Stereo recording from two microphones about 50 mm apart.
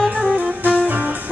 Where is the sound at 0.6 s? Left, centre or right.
Right.